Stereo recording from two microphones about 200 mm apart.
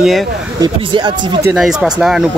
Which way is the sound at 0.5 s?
20° right (ahead or behind).